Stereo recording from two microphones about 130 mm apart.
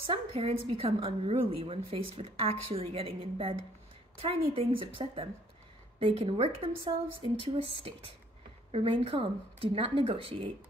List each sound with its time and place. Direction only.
0.0 s a woman's voice: 45° right (ahead or behind)